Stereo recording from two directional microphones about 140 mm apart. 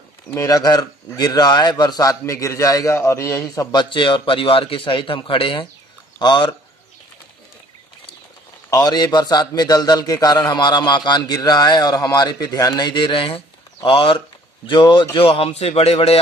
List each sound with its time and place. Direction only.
0.3 s a man's voice: 20° left (ahead or behind)
3.9 s speech: 35° left (ahead or behind)
8.6 s a man's voice: 25° left (ahead or behind); by 16.2 s 50° left (ahead or behind)